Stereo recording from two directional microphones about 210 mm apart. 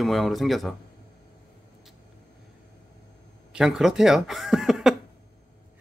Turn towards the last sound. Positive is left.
turn(degrees=0)  # may be behind; listen again after turning